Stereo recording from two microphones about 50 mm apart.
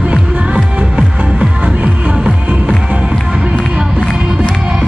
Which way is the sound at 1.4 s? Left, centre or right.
Right.